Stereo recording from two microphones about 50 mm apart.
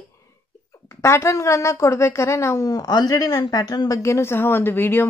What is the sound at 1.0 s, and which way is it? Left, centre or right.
A woman's voice, left.